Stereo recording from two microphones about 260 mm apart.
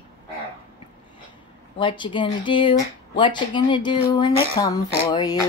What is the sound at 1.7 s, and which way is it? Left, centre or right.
Speech, centre.